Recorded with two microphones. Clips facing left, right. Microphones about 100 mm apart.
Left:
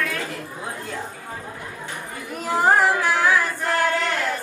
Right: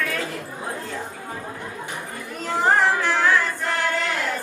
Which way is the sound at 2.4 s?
5° left (ahead or behind).